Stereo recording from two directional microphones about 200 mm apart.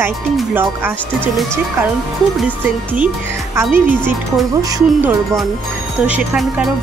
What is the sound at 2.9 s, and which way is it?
Speech, 10° right (ahead or behind).